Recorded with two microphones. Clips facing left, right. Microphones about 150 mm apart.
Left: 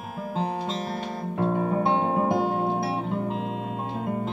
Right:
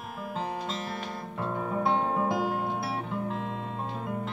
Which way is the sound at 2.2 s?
25° left (ahead or behind).